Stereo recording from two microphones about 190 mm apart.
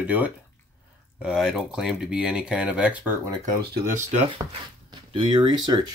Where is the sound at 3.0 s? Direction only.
15° right (ahead or behind).